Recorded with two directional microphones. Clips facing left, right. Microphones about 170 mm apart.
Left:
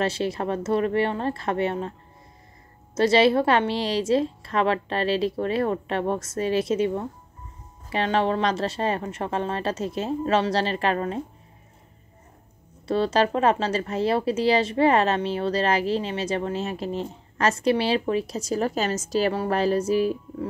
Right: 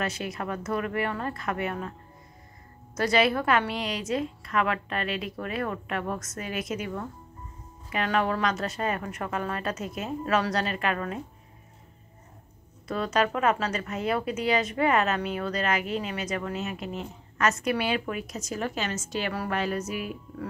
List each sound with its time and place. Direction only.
0.0 s a woman's voice: 30° left (ahead or behind)
12.8 s speech: 30° left (ahead or behind)